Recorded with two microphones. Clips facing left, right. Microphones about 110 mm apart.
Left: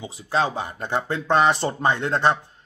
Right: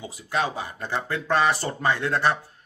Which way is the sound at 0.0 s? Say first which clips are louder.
Left 3 dB; 25° left (ahead or behind).